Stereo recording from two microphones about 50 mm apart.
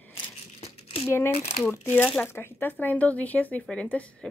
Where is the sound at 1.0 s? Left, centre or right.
Left.